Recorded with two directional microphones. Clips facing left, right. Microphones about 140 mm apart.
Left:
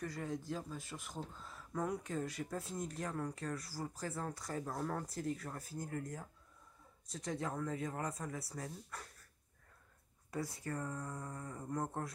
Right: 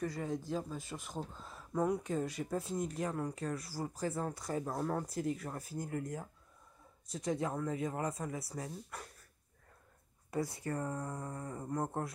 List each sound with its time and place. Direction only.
0.0 s speech: 15° right (ahead or behind)
10.3 s speech: 15° right (ahead or behind)
10.7 s speech: 30° right (ahead or behind)